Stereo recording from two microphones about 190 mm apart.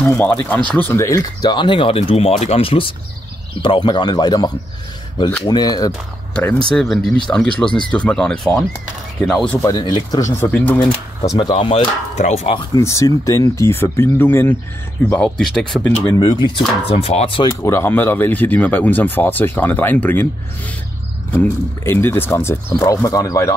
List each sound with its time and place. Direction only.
0.0 s speech: 10° left (ahead or behind)
6.7 s speech: centre (ahead or behind)
9.6 s speech: 20° left (ahead or behind)
10.5 s speech: 5° left (ahead or behind)
11.2 s speech: 25° left (ahead or behind)
12.7 s speech: 15° left (ahead or behind)
16.0 s speech: 20° left (ahead or behind)
17.5 s speech: 15° left (ahead or behind)
21.4 s speech: 10° left (ahead or behind)